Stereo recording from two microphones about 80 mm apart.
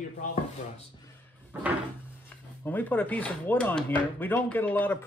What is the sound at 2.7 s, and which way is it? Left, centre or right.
Speech, left.